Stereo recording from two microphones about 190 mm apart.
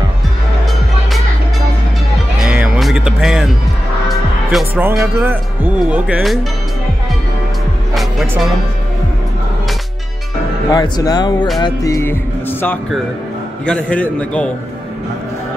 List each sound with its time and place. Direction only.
2.4 s music: 5° right (ahead or behind)
4.5 s a man's voice: centre (ahead or behind)
5.0 s speech: 10° right (ahead or behind)
7.9 s music: centre (ahead or behind)
10.7 s a man's voice: 20° left (ahead or behind)